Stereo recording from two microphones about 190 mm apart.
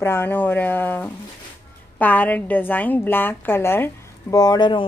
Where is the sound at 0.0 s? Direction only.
10° left (ahead or behind).